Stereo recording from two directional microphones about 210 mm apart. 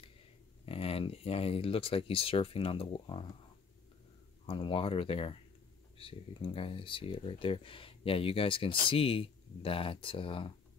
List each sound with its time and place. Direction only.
0.7 s speech: 25° left (ahead or behind)
4.5 s speech: 25° left (ahead or behind)